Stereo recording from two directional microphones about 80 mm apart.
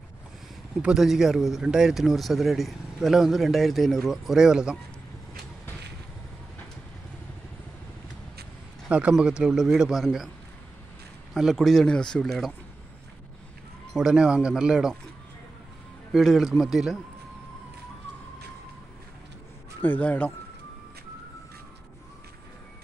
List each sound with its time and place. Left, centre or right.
0.8 s speech: centre
8.8 s speech: centre
11.3 s speech: centre
13.9 s speech: centre
16.1 s speech: centre
19.8 s speech: left